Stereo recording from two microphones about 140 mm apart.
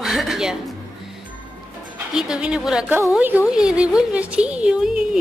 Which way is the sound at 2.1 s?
5° right (ahead or behind).